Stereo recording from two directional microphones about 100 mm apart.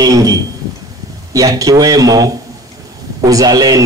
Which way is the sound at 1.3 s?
35° right (ahead or behind).